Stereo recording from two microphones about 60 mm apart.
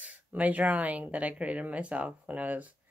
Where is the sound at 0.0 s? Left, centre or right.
Right.